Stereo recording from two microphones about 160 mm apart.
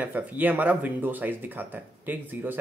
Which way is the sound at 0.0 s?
10° right (ahead or behind).